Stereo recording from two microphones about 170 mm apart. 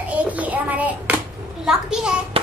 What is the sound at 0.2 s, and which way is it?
Child singing, 10° right (ahead or behind).